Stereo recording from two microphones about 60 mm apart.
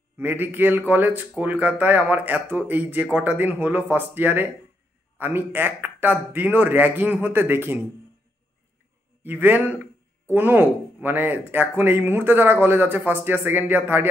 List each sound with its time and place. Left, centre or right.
0.2 s speech: right
9.2 s speech: right